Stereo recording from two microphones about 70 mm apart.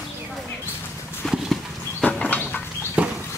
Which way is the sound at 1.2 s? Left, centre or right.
Centre.